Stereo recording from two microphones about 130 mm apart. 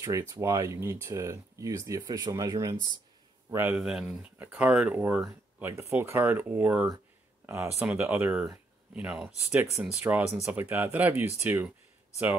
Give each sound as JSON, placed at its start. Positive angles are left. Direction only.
{"t": 0.0, "sound": "a man's voice", "side_deg": -20}
{"t": 3.7, "sound": "speech", "side_deg": 0}
{"t": 4.4, "sound": "speech", "side_deg": -15}
{"t": 9.6, "sound": "speech", "side_deg": -15}